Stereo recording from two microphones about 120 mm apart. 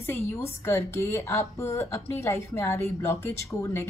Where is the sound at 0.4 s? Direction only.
20° left (ahead or behind).